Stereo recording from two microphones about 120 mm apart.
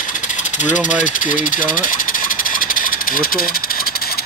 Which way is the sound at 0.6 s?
90° left.